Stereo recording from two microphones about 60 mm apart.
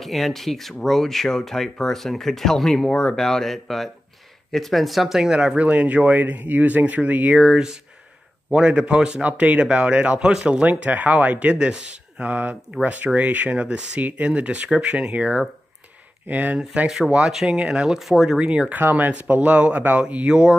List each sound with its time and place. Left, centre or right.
0.0 s speech: centre; by 16.5 s right
16.5 s speech: centre
18.4 s speech: centre
18.8 s speech: right